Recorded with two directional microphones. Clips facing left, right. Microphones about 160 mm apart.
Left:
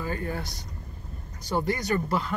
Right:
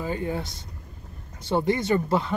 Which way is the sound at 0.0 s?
20° right (ahead or behind).